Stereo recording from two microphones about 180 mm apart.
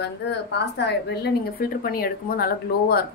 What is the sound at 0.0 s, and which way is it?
A woman's voice, 70° left (ahead or behind).